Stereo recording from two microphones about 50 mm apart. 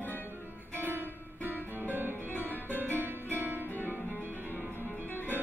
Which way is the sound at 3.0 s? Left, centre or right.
Right.